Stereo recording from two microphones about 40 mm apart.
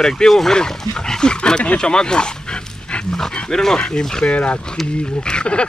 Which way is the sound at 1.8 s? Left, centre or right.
Centre.